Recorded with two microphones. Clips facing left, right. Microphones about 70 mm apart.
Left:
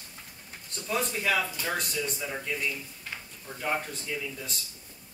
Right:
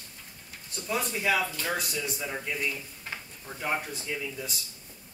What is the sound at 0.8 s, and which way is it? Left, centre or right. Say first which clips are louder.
Speech: even; centre.